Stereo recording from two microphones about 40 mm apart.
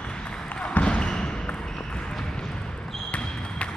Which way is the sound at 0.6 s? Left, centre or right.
Left.